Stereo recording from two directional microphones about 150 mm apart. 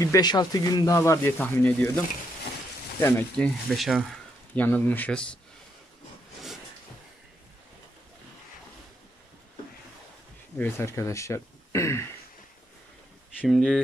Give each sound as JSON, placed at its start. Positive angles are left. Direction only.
{"t": 0.0, "sound": "speech", "side_deg": 25}
{"t": 3.0, "sound": "speech", "side_deg": 15}
{"t": 3.7, "sound": "a sound", "side_deg": 0}
{"t": 4.6, "sound": "speech", "side_deg": 10}
{"t": 10.6, "sound": "speech", "side_deg": 20}
{"t": 13.5, "sound": "speech", "side_deg": 0}